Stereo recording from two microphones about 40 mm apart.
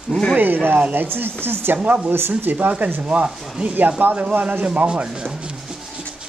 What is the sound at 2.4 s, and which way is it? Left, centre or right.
Speech, right.